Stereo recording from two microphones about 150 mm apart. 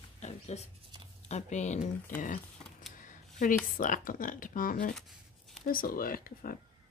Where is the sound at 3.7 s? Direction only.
60° left (ahead or behind).